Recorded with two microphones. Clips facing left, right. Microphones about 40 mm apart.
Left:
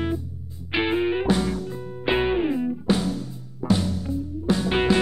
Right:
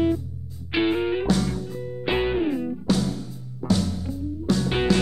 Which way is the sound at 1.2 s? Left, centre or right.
Left.